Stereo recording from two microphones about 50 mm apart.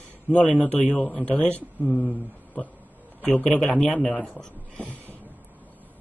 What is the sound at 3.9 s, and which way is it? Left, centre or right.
Speech, left.